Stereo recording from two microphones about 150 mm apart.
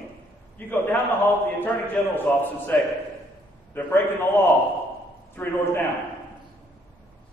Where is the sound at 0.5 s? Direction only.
15° left (ahead or behind).